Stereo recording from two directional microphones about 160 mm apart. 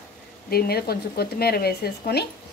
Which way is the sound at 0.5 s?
75° left (ahead or behind).